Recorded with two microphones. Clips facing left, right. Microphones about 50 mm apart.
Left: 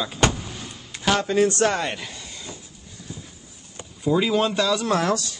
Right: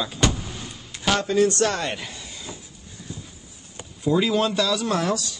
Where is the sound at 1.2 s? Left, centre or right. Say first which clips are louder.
Right 1 dB; left.